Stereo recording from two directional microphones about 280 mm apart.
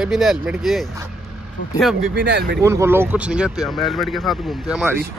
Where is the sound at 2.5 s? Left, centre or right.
Centre.